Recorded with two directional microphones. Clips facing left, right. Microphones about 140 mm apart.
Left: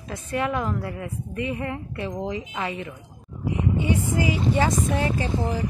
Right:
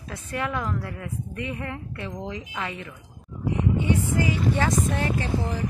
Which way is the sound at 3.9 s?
10° left (ahead or behind).